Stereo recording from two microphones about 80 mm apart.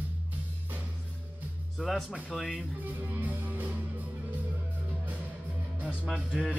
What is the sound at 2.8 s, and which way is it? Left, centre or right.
Music, right.